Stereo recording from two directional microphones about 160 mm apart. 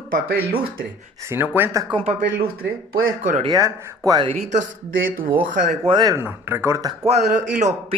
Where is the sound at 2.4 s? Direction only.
65° right (ahead or behind).